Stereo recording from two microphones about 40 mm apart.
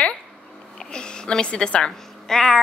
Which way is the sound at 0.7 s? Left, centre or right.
Left.